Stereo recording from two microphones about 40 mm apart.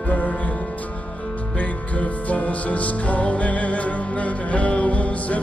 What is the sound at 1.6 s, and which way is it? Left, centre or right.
Music, left.